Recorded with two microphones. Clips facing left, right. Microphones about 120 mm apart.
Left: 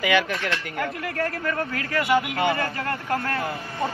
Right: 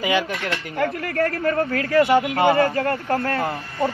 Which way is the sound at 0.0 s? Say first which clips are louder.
Even; 30° right (ahead or behind).